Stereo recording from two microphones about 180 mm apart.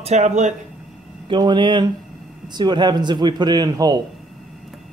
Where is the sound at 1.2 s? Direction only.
25° right (ahead or behind).